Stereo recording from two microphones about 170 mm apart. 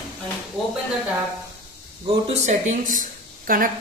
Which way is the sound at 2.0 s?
40° right (ahead or behind).